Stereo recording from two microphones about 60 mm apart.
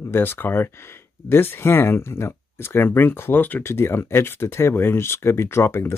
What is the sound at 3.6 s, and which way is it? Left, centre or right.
Speech, left.